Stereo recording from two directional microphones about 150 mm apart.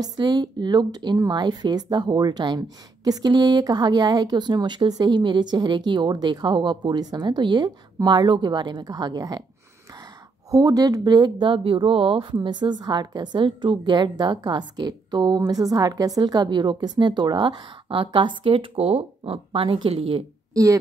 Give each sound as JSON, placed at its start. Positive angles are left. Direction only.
{"t": 0.0, "sound": "speech", "side_deg": -30}
{"t": 10.5, "sound": "a woman's voice", "side_deg": -25}
{"t": 20.5, "sound": "speech", "side_deg": -20}